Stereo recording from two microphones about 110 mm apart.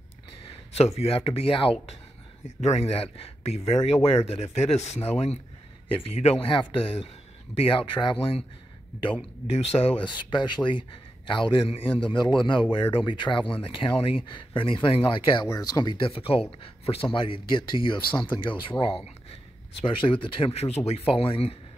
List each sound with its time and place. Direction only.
0.4 s speech: 65° left (ahead or behind)
2.6 s speech: 80° left
5.9 s a man's voice: 60° left (ahead or behind)
9.5 s speech: 70° left (ahead or behind)
10.0 s a man's voice: 45° left (ahead or behind)
15.4 s a man's voice: 35° left (ahead or behind); by 21.5 s 60° left (ahead or behind)